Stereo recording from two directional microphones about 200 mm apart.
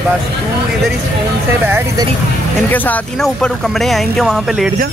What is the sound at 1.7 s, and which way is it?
Speech, 10° right (ahead or behind).